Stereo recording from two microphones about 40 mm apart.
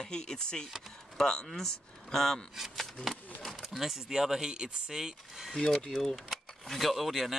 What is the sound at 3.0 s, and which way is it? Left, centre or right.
Speech, centre.